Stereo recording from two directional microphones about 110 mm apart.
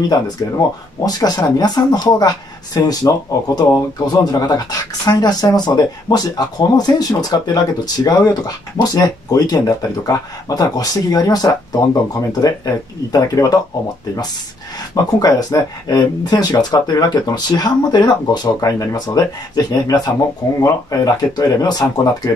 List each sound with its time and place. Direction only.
0.1 s speech: 35° left (ahead or behind)
15.0 s speech: 35° left (ahead or behind)